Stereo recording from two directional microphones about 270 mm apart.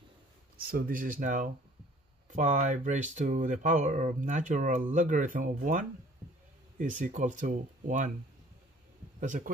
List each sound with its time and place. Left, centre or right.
0.6 s speech: right
9.2 s speech: right